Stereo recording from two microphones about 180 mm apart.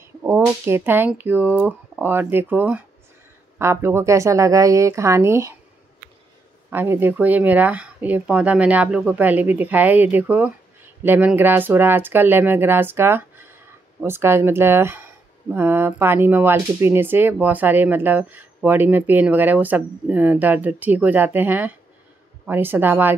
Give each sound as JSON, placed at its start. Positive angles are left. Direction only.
{"t": 0.2, "sound": "speech", "side_deg": -15}
{"t": 6.7, "sound": "speech", "side_deg": -10}